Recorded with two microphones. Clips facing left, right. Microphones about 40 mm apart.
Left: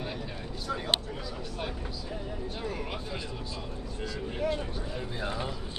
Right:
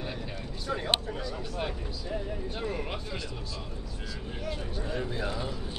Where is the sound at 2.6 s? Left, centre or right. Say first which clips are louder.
Right 2 dB; centre.